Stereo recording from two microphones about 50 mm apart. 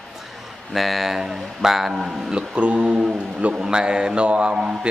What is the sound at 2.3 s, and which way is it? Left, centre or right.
A man's voice, right.